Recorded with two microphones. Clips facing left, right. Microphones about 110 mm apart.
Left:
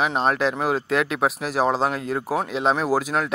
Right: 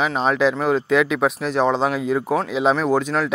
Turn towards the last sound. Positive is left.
turn(degrees=5)  # may be behind; listen again after turning